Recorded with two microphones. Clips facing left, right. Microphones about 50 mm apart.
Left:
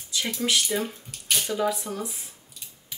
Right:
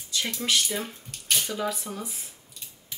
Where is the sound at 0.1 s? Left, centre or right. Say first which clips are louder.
Left 1 dB; centre.